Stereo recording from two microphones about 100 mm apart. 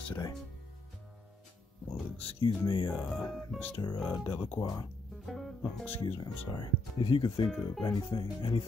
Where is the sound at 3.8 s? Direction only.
40° left (ahead or behind).